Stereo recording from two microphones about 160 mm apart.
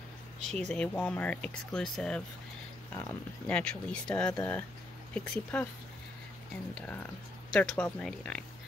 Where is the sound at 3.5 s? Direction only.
5° left (ahead or behind).